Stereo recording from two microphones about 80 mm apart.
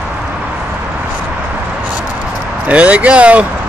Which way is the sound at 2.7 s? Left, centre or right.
Centre.